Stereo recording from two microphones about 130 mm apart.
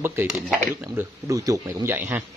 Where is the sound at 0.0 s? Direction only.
20° right (ahead or behind).